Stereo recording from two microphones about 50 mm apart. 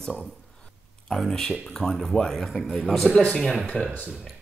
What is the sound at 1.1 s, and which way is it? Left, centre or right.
Speech, centre.